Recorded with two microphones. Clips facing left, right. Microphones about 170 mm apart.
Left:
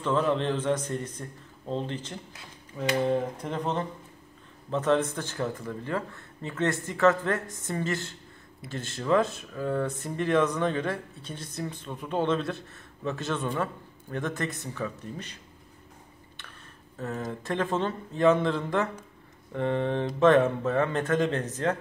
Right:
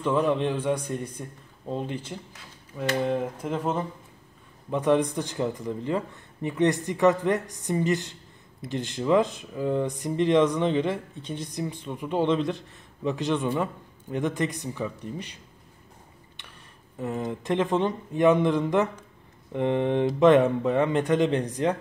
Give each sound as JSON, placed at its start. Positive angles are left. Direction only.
{"t": 0.0, "sound": "speech", "side_deg": -10}
{"t": 16.9, "sound": "speech", "side_deg": -15}